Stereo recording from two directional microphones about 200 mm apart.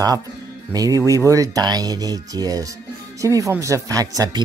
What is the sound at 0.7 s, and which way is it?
Speech, 15° right (ahead or behind).